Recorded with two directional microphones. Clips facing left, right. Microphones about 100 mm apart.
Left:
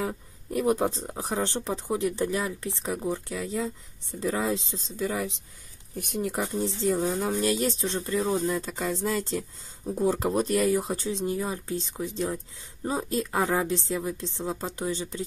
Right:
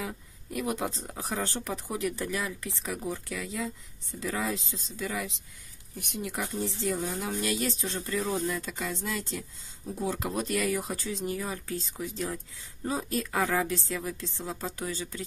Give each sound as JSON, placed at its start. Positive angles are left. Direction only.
{"t": 0.0, "sound": "speech", "side_deg": 35}
{"t": 6.4, "sound": "speech", "side_deg": 25}